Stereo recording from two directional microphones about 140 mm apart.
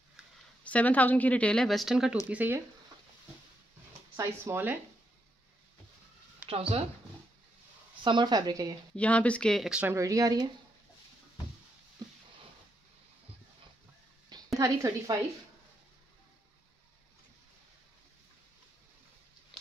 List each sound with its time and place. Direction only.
0.7 s speech: 10° left (ahead or behind); by 2.6 s 10° right (ahead or behind)
4.2 s speech: 15° right (ahead or behind)
8.0 s speech: 35° right (ahead or behind)
8.9 s speech: 10° left (ahead or behind); by 9.9 s 5° right (ahead or behind)
9.9 s speech: 25° right (ahead or behind)
14.6 s speech: 25° right (ahead or behind)